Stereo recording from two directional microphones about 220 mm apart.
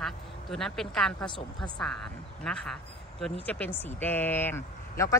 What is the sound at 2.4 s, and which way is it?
Speech, 5° left (ahead or behind).